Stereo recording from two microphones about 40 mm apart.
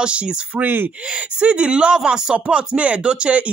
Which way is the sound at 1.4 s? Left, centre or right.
Right.